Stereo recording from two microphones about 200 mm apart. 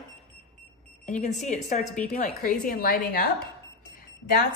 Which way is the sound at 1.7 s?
40° left (ahead or behind).